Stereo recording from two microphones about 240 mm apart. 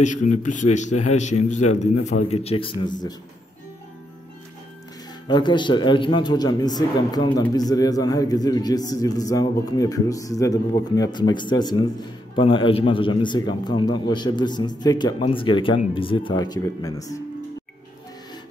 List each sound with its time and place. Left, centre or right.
0.0 s a man's voice: left
5.3 s a man's voice: centre